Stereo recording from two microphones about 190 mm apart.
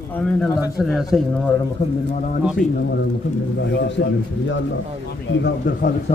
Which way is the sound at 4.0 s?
60° left (ahead or behind).